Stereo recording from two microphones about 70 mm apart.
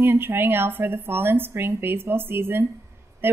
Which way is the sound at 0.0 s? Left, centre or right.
Right.